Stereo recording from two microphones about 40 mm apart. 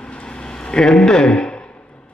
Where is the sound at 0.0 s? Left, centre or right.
Left.